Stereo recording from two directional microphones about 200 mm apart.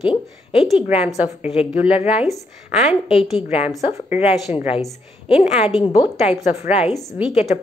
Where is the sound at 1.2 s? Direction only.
30° left (ahead or behind).